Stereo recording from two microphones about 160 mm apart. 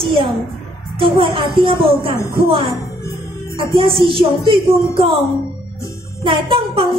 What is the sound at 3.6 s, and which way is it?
Child singing, 30° right (ahead or behind).